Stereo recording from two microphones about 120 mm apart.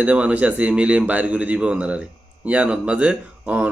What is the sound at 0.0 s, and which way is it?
A man's voice, 10° right (ahead or behind).